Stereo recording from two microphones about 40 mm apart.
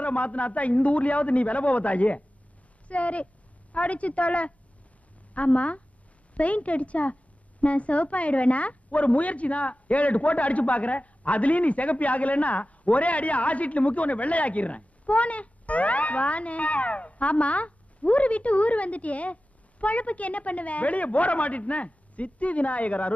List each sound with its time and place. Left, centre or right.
0.0 s a woman's voice: left